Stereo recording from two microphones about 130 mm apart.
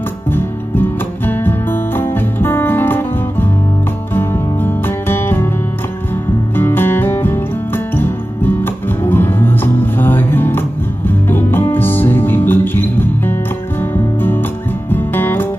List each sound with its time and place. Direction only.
0.3 s music: 15° left (ahead or behind)
6.5 s music: 15° left (ahead or behind)